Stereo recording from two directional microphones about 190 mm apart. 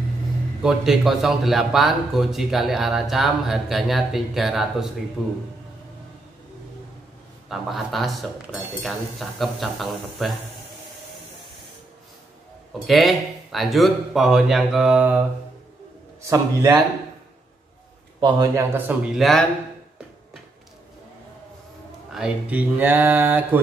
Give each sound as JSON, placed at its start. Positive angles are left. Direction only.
{"t": 0.6, "sound": "a man's voice", "side_deg": 0}
{"t": 7.4, "sound": "a man's voice", "side_deg": 0}
{"t": 12.7, "sound": "a man's voice", "side_deg": 0}
{"t": 16.3, "sound": "speech", "side_deg": -15}
{"t": 18.2, "sound": "speech", "side_deg": -15}
{"t": 22.1, "sound": "speech", "side_deg": -5}